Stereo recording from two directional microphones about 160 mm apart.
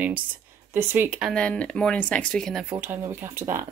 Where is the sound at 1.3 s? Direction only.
5° left (ahead or behind).